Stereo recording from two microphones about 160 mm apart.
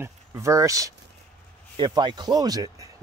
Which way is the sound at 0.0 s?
20° right (ahead or behind).